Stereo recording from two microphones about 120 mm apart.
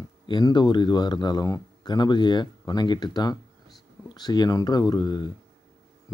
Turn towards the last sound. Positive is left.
turn(degrees=35)  # may be behind; listen again after turning